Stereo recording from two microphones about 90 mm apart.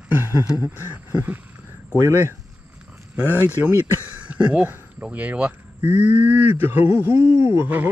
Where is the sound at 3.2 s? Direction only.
20° right (ahead or behind).